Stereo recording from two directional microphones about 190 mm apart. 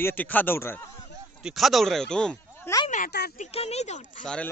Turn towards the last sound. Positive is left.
turn(degrees=5)  # may be behind; listen again after turning